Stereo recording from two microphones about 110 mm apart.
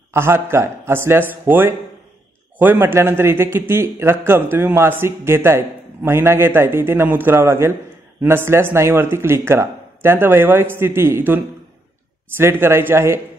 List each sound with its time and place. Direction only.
0.1 s a man's voice: 20° right (ahead or behind)